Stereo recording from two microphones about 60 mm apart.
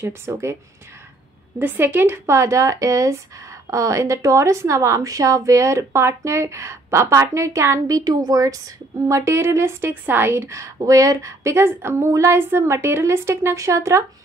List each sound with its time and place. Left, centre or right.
0.0 s a woman's voice: right
1.6 s a woman's voice: right
7.9 s a woman's voice: right
12.4 s a woman's voice: right